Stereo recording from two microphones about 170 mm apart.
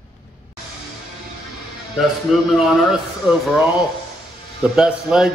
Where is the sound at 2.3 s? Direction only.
Centre (ahead or behind).